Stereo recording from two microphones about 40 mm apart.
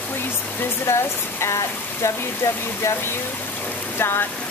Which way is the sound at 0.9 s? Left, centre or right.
Left.